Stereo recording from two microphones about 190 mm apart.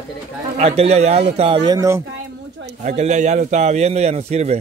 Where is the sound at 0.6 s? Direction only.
35° right (ahead or behind).